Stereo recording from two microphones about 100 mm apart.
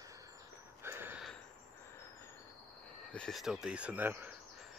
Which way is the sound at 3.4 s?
5° right (ahead or behind).